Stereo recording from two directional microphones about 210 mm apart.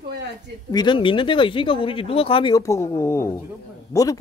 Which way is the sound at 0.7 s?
20° left (ahead or behind).